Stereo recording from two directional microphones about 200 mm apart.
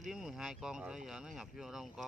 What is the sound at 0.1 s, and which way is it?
Speech, centre (ahead or behind).